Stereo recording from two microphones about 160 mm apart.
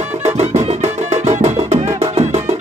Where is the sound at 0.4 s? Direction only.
45° right (ahead or behind).